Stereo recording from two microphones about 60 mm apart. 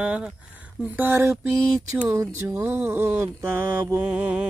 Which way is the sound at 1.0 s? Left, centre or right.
Right.